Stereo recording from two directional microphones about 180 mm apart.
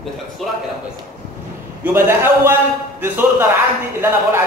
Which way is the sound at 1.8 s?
15° right (ahead or behind).